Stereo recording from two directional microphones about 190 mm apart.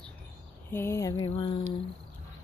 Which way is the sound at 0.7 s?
15° left (ahead or behind).